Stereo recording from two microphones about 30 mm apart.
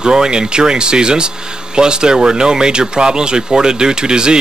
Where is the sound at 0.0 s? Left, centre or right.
Right.